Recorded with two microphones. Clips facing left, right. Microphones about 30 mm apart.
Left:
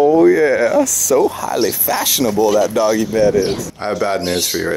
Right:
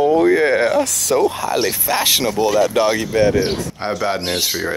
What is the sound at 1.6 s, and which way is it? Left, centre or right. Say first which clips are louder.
Speech: left 2 dB; right.